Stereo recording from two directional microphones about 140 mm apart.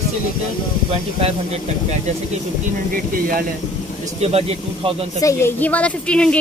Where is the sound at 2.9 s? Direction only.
90° right.